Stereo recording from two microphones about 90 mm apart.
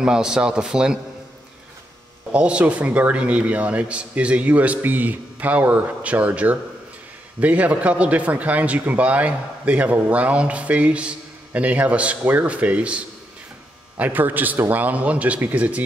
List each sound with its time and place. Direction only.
0.0 s speech: 10° right (ahead or behind)
2.3 s speech: 15° right (ahead or behind)